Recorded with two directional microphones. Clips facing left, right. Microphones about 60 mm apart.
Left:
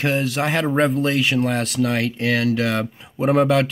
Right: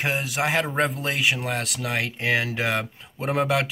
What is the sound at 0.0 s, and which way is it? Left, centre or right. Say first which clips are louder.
Speech: left 4 dB; centre.